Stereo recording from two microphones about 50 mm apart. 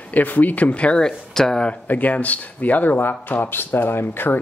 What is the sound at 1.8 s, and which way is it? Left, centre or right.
Speech, left.